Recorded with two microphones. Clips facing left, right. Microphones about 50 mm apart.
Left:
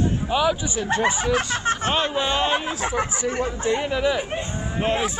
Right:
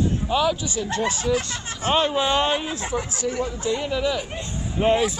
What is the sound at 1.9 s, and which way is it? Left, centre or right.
Speech, centre.